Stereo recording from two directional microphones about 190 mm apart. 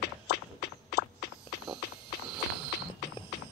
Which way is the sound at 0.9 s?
60° left (ahead or behind).